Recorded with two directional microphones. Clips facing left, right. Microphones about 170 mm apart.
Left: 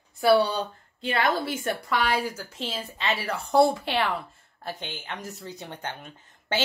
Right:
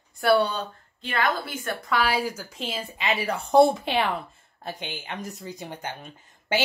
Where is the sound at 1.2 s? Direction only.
30° left (ahead or behind).